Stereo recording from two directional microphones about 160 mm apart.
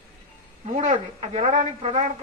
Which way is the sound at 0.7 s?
50° right (ahead or behind).